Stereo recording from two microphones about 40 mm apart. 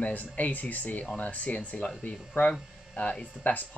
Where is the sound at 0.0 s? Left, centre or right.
Left.